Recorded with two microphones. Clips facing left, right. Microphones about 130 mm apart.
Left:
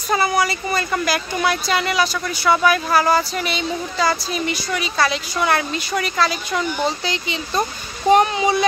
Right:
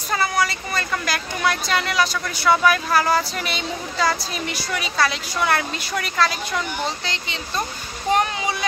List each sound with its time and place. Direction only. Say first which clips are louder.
0.1 s speech: left 3 dB; 15° left (ahead or behind)
8.1 s speech: left 6 dB; 20° left (ahead or behind)